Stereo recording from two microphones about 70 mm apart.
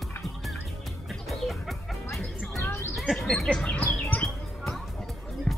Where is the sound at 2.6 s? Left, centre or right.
Left.